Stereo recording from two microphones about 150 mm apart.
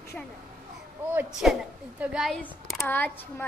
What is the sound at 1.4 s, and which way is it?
A woman's voice, 5° right (ahead or behind).